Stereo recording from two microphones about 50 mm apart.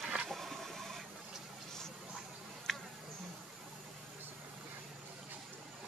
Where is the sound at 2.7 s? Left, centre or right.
Centre.